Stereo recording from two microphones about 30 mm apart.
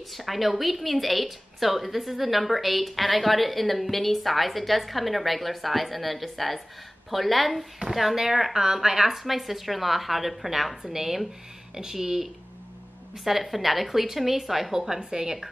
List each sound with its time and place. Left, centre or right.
0.1 s a woman's voice: centre
8.5 s a woman's voice: centre
9.1 s a woman's voice: centre
15.0 s speech: centre